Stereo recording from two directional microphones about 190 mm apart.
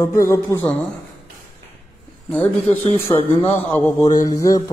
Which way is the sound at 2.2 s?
5° left (ahead or behind).